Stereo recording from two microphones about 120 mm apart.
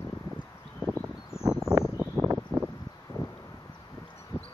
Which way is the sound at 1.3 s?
5° right (ahead or behind).